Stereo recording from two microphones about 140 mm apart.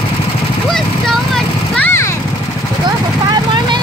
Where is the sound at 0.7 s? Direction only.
Centre (ahead or behind).